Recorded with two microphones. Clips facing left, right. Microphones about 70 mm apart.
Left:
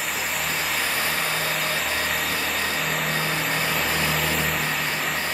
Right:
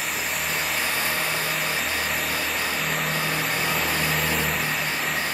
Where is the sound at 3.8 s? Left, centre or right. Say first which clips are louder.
Left 1 dB; centre.